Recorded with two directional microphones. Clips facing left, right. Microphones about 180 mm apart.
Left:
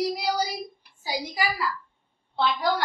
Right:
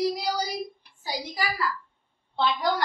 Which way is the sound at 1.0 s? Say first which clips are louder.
Left 2 dB; 10° left (ahead or behind).